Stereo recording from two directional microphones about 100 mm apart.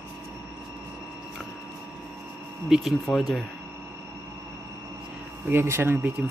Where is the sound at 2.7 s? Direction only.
Centre (ahead or behind).